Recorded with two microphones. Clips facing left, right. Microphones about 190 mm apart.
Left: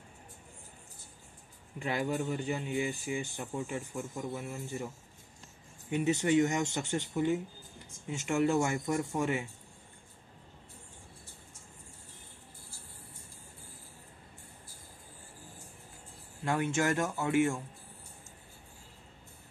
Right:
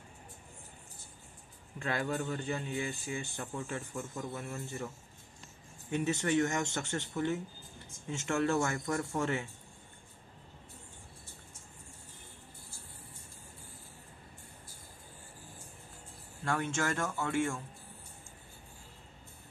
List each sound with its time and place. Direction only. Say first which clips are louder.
1.8 s a man's voice: left 2 dB; 15° left (ahead or behind)
16.4 s a man's voice: left 3 dB; 15° left (ahead or behind)